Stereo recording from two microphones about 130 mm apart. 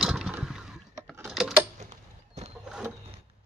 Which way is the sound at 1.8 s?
65° right (ahead or behind).